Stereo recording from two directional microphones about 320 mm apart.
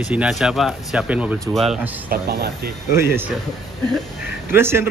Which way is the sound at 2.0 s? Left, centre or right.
Right.